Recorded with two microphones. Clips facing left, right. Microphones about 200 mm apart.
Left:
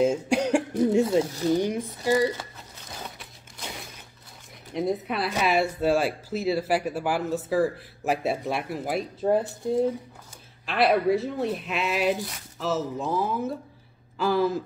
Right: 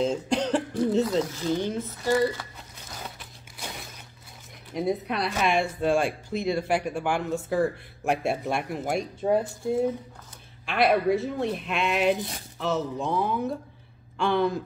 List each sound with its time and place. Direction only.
0.0 s cough: 10° left (ahead or behind)
1.2 s speech: 35° left (ahead or behind)
1.5 s speech: 15° left (ahead or behind)
4.7 s speech: centre (ahead or behind)